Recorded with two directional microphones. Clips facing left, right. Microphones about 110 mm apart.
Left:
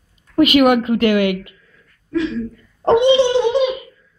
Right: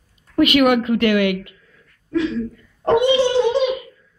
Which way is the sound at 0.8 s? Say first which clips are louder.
Left 1 dB; 30° left (ahead or behind).